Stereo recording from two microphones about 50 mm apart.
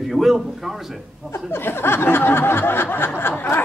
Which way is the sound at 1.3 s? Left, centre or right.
Left.